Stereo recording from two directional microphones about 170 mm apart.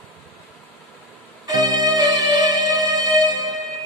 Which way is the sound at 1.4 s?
25° right (ahead or behind).